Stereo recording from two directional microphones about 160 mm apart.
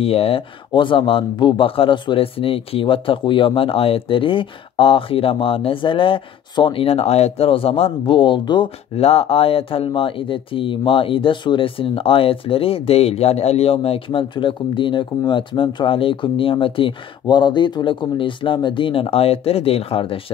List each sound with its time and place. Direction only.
0.0 s speech: 40° left (ahead or behind)